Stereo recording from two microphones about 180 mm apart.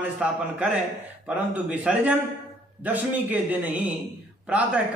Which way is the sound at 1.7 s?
10° right (ahead or behind).